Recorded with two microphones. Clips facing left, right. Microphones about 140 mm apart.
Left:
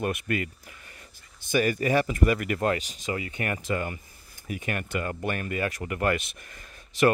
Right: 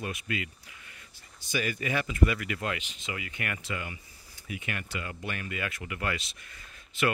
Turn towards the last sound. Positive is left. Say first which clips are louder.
# left 7 dB
turn(degrees=50)  # may be behind; listen again after turning